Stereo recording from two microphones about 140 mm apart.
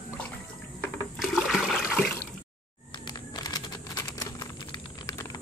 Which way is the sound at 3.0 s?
30° left (ahead or behind).